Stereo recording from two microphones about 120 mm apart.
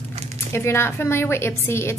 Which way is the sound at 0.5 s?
20° left (ahead or behind).